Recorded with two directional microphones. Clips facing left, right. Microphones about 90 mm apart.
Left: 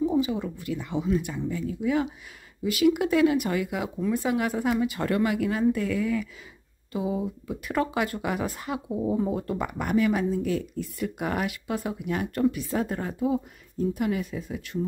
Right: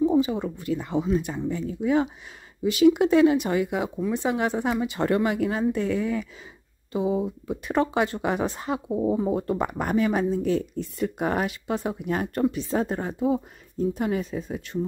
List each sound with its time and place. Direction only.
0.0 s speech: 35° right (ahead or behind)